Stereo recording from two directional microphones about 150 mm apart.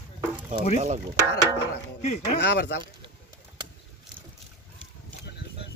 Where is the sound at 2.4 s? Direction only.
90° left.